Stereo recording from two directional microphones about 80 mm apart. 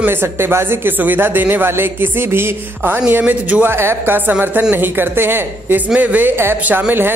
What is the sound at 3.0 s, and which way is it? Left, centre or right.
Speech, centre.